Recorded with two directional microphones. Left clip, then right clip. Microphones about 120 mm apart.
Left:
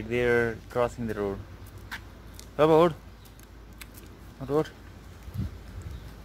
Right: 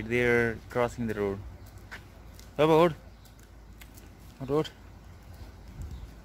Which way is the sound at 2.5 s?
50° right (ahead or behind).